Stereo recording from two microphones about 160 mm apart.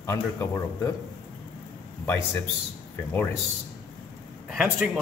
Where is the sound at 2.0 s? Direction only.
15° left (ahead or behind).